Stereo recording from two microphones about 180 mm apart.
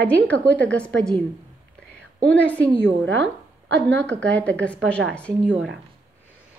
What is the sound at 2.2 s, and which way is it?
Speech, 10° left (ahead or behind).